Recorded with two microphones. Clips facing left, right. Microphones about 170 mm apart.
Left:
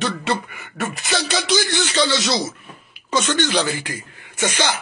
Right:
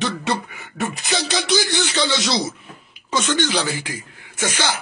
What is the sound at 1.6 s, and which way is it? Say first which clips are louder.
Speech: left 1 dB; 15° right (ahead or behind).